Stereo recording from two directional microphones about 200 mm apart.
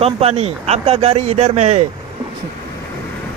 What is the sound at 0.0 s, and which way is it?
Speech, 30° right (ahead or behind).